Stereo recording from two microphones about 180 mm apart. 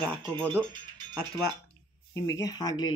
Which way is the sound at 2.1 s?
20° left (ahead or behind).